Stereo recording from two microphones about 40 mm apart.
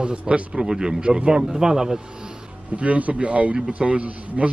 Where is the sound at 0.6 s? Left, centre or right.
Centre.